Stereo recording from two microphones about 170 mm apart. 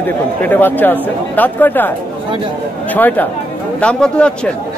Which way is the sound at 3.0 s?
10° left (ahead or behind).